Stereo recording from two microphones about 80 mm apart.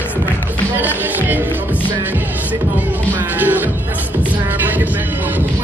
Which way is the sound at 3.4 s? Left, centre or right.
Right.